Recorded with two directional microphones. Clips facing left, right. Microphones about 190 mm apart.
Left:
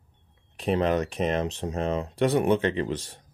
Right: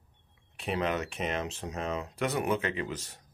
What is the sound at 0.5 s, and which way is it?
Speech, 35° left (ahead or behind).